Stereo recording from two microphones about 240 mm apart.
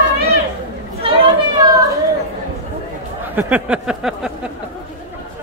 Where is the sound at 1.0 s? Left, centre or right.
Right.